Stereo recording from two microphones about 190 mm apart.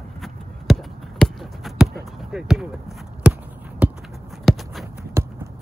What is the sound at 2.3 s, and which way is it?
Speech, 5° right (ahead or behind).